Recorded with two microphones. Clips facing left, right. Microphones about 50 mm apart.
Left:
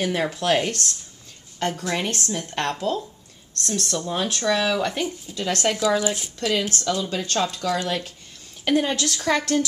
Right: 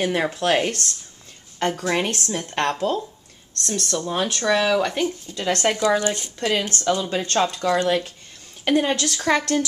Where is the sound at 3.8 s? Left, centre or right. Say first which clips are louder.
Right 3 dB; centre.